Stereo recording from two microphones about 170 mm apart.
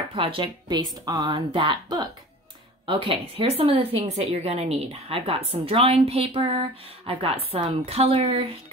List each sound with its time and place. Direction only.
0.1 s speech: 30° right (ahead or behind)